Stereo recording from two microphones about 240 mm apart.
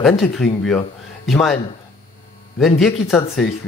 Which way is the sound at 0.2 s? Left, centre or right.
Centre.